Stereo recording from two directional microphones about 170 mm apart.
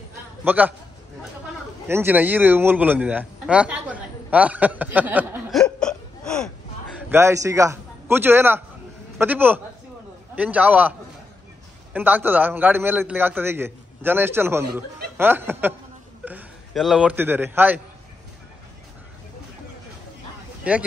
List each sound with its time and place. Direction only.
0.4 s a man's voice: 10° right (ahead or behind)
1.9 s a man's voice: 15° right (ahead or behind)
5.5 s hiccup: 5° left (ahead or behind)
7.1 s a man's voice: 15° right (ahead or behind)
20.7 s a man's voice: 10° right (ahead or behind)